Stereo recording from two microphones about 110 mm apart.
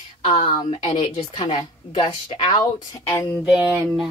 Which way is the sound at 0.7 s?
90° left.